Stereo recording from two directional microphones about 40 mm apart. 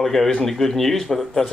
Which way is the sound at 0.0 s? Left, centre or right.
Centre.